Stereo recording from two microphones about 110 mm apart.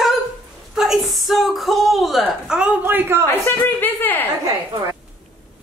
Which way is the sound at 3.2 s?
20° left (ahead or behind).